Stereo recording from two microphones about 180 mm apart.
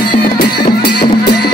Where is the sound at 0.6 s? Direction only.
25° left (ahead or behind).